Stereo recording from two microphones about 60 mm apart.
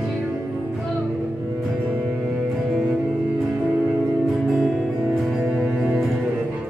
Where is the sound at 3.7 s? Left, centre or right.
Right.